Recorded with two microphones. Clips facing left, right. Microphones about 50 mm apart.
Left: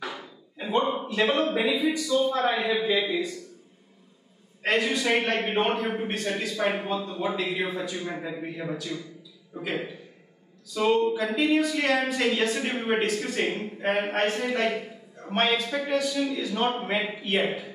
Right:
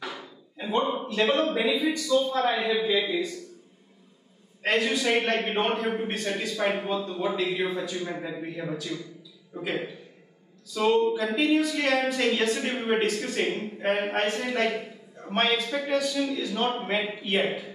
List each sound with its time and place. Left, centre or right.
0.0 s speech: centre
4.6 s speech: centre